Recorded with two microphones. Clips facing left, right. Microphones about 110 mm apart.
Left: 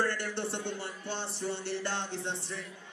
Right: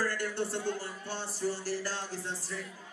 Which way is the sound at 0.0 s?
25° left (ahead or behind).